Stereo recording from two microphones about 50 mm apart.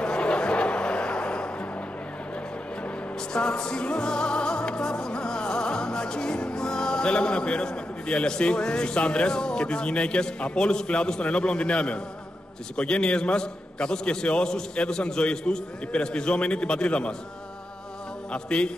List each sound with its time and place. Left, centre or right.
0.0 s music: centre
3.3 s music: centre
12.7 s a man's voice: centre
18.3 s a man's voice: centre